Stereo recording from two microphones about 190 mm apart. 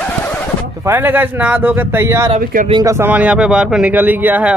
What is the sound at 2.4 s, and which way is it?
Speech, 45° right (ahead or behind).